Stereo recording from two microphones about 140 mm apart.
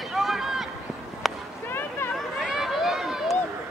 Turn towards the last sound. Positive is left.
turn(degrees=0)  # may be behind; listen again after turning